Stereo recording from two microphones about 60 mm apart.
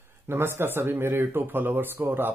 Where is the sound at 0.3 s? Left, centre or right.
Right.